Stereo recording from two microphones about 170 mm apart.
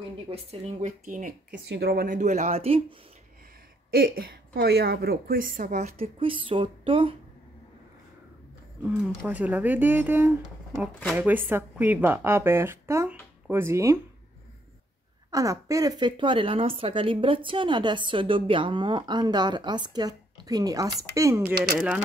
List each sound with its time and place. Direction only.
0.3 s speech: 40° right (ahead or behind)
1.7 s speech: 70° right (ahead or behind); by 2.8 s 35° right (ahead or behind)
3.9 s a woman's voice: 65° right (ahead or behind)
5.9 s a woman's voice: 30° right (ahead or behind)
8.8 s a woman's voice: 5° right (ahead or behind)
15.3 s a woman's voice: 20° right (ahead or behind)
21.7 s a woman's voice: 5° right (ahead or behind)